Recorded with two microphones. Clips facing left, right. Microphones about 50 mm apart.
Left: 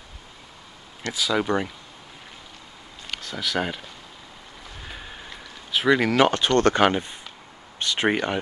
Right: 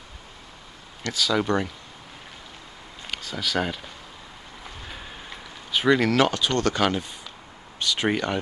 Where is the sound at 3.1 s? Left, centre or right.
Centre.